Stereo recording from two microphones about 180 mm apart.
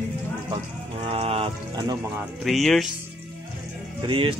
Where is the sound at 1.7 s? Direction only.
20° right (ahead or behind).